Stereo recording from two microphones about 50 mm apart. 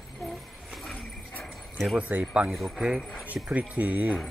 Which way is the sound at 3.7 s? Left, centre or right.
Right.